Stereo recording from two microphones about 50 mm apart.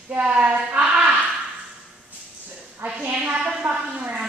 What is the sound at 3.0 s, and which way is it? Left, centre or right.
A woman's voice, right.